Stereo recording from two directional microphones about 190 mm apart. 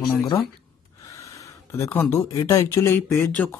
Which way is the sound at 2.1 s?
15° left (ahead or behind).